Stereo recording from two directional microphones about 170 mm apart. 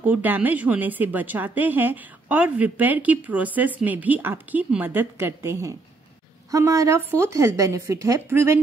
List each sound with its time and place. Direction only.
0.0 s a woman's voice: 10° right (ahead or behind)